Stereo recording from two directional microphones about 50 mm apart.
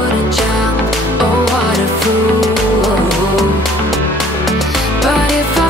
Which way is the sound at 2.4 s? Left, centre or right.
Centre.